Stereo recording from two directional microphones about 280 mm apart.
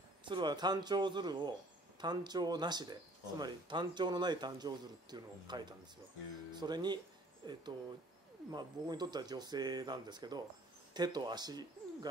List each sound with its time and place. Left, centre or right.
0.2 s speech: centre